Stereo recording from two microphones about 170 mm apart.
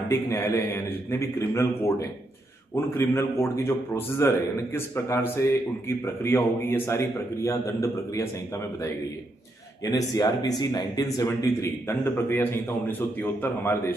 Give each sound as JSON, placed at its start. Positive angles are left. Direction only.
{"t": 0.1, "sound": "a man's voice", "side_deg": 15}
{"t": 9.8, "sound": "speech", "side_deg": 25}
{"t": 11.1, "sound": "a man's voice", "side_deg": 15}